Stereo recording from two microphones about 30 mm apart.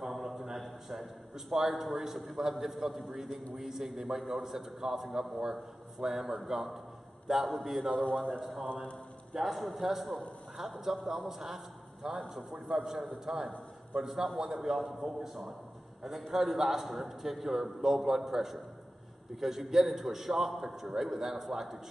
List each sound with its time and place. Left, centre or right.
0.0 s a sound: centre
1.5 s a man's voice: centre
13.2 s a man's voice: centre